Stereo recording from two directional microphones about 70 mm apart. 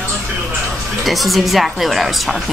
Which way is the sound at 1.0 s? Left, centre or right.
Centre.